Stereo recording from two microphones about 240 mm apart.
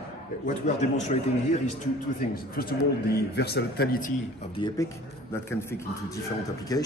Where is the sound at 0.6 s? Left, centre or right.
Left.